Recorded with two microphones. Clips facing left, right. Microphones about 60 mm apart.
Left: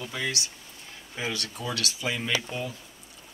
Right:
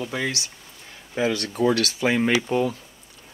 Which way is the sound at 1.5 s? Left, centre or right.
Right.